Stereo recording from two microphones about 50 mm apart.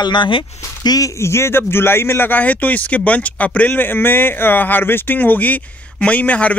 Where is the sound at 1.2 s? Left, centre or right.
Left.